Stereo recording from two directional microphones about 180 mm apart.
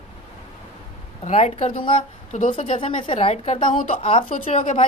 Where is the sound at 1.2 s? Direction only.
35° left (ahead or behind).